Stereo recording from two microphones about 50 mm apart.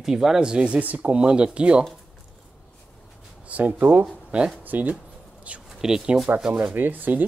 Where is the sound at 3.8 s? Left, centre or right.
Right.